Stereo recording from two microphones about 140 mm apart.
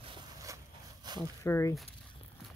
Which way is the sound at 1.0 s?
30° right (ahead or behind).